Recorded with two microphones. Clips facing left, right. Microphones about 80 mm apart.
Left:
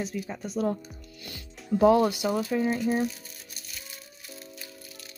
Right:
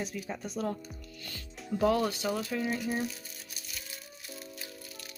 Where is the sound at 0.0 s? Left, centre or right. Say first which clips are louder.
Left 4 dB; centre.